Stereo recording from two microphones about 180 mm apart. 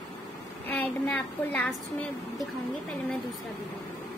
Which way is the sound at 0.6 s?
10° left (ahead or behind).